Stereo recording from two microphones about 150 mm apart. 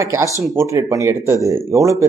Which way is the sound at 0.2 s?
20° right (ahead or behind).